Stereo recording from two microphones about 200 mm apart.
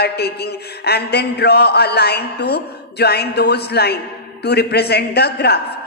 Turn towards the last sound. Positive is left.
turn(degrees=55)  # may be behind; listen again after turning